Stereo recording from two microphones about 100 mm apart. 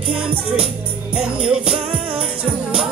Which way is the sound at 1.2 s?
10° right (ahead or behind).